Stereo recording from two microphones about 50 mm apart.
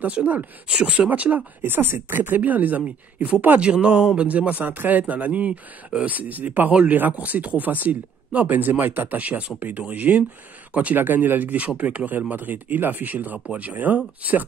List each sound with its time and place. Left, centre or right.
0.2 s speech: right
1.6 s speech: right
3.6 s speech: right
11.0 s speech: right